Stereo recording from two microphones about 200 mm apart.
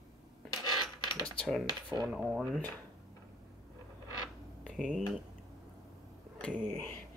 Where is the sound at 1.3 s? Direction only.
Centre (ahead or behind).